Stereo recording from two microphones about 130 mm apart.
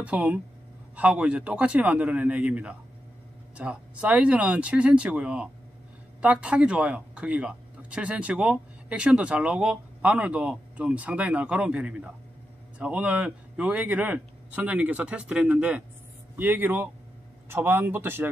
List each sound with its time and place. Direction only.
0.0 s speech: 10° right (ahead or behind)